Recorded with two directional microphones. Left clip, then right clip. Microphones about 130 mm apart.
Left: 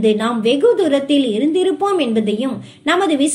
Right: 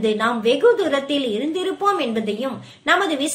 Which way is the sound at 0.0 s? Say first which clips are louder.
Left 3 dB; 25° left (ahead or behind).